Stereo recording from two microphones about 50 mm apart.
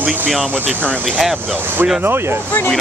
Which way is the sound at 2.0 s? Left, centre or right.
Right.